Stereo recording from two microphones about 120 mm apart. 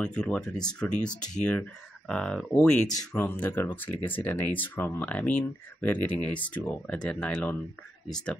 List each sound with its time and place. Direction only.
0.0 s speech: 10° left (ahead or behind)